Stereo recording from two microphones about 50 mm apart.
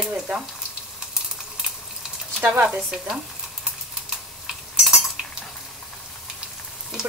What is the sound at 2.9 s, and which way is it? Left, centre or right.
Speech, centre.